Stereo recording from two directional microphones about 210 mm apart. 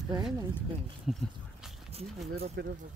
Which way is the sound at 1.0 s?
Centre (ahead or behind).